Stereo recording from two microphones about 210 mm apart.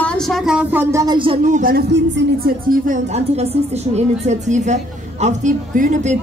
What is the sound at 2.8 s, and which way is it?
A woman's voice, 35° right (ahead or behind).